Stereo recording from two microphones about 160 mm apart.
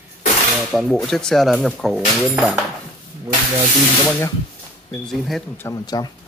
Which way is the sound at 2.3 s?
10° right (ahead or behind).